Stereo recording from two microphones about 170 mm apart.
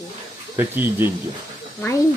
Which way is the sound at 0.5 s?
15° right (ahead or behind).